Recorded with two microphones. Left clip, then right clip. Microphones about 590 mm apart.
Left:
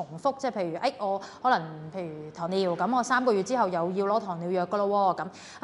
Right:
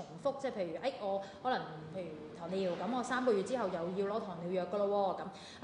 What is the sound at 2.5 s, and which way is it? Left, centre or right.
A woman's voice, left.